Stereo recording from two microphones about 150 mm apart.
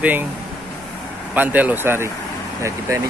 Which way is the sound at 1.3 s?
10° right (ahead or behind).